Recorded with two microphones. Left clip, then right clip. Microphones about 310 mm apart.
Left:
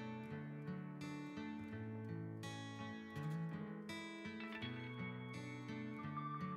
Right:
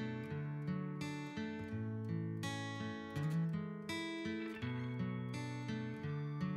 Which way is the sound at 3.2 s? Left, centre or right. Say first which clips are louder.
Right 5 dB; centre.